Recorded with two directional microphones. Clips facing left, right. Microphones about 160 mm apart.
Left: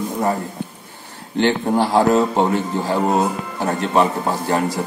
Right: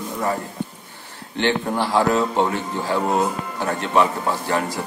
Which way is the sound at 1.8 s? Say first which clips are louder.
Left 5 dB; 35° left (ahead or behind).